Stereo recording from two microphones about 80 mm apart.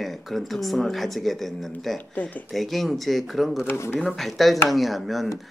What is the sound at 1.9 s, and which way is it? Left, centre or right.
Speech, centre.